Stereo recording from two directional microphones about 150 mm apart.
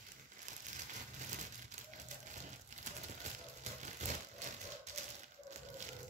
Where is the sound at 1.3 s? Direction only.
55° right (ahead or behind).